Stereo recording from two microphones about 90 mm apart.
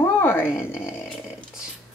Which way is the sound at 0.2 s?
25° left (ahead or behind).